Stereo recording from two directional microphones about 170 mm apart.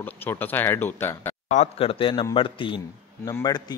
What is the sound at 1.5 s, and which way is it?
Speech, 40° left (ahead or behind).